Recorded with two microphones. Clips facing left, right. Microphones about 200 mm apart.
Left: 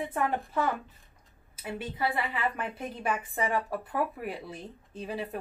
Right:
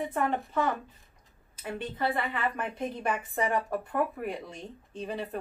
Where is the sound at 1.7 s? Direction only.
10° left (ahead or behind).